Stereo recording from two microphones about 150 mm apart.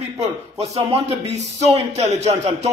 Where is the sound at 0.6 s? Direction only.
45° right (ahead or behind).